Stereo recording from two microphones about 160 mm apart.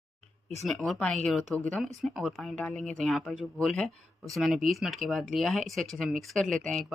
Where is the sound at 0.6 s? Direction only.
Centre (ahead or behind).